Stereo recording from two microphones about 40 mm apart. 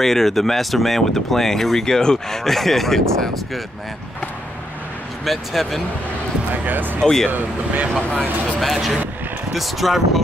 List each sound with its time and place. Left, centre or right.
0.0 s speech: centre
5.2 s speech: centre
6.5 s speech: right
7.0 s speech: centre
7.2 s speech: right
8.5 s speech: centre